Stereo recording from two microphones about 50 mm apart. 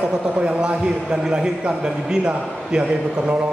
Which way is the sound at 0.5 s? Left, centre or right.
Right.